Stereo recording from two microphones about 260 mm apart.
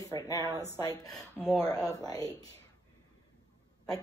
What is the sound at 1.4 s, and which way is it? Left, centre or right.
Speech, centre.